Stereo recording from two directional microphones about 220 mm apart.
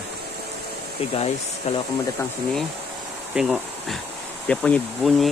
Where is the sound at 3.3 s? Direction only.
Centre (ahead or behind).